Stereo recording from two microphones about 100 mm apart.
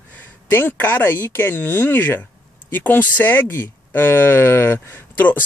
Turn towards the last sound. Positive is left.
turn(degrees=20)  # may be behind; listen again after turning